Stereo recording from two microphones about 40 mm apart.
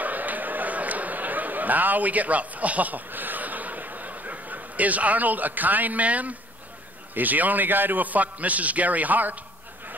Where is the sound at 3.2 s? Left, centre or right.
Right.